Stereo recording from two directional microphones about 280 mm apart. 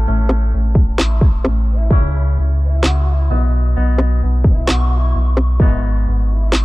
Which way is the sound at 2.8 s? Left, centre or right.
Centre.